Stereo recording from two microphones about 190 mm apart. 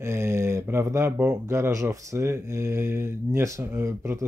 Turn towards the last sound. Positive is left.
turn(degrees=-15)  # may be behind; listen again after turning